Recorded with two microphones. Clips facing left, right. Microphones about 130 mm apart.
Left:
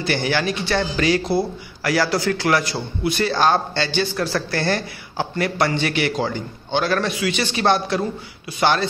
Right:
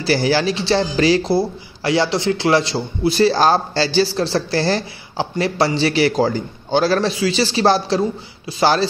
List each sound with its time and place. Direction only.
0.0 s speech: 35° right (ahead or behind)